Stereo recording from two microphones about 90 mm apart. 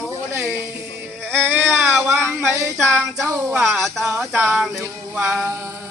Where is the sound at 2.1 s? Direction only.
25° right (ahead or behind).